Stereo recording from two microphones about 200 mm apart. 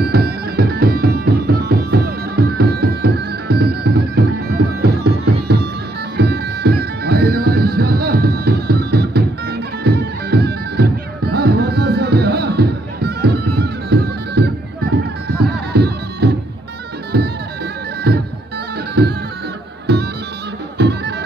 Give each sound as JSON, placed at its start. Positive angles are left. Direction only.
{"t": 0.0, "sound": "music", "side_deg": -50}
{"t": 15.7, "sound": "music", "side_deg": -55}
{"t": 18.1, "sound": "music", "side_deg": -55}
{"t": 19.9, "sound": "bagpipes", "side_deg": -55}
{"t": 20.7, "sound": "music", "side_deg": -55}